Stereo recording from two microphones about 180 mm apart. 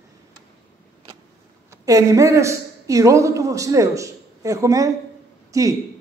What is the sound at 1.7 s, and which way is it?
A woman's voice, 20° right (ahead or behind).